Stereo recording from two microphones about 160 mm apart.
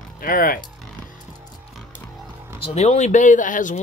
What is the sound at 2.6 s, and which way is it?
Speech, 40° left (ahead or behind).